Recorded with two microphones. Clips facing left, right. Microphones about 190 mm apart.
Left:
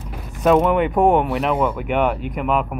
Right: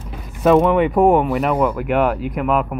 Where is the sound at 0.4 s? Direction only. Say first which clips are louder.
Right 2 dB; centre (ahead or behind).